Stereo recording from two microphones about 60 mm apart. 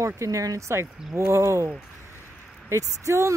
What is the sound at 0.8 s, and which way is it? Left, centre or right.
Speech, right.